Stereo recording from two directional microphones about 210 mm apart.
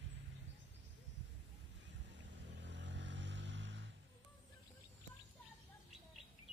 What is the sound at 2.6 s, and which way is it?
Music, 60° right (ahead or behind).